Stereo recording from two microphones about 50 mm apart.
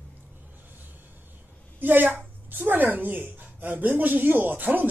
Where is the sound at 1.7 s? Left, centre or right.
Right.